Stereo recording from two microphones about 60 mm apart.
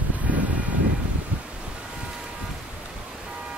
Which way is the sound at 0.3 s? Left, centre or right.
Right.